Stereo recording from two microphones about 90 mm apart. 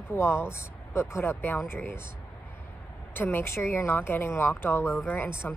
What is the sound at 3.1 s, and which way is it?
Speech, 25° left (ahead or behind).